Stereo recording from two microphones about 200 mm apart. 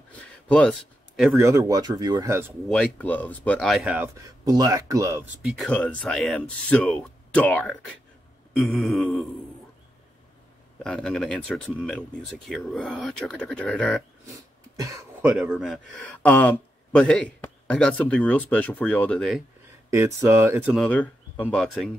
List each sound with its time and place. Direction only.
0.1 s a sound: 5° left (ahead or behind)
1.3 s speech: 15° right (ahead or behind)
2.7 s speech: 5° left (ahead or behind)
4.5 s speech: 20° right (ahead or behind)
5.4 s speech: centre (ahead or behind)
10.8 s speech: 5° left (ahead or behind)
14.8 s a sound: 15° right (ahead or behind)
15.3 s speech: centre (ahead or behind)
19.9 s speech: 15° right (ahead or behind)
20.7 s speech: 5° left (ahead or behind)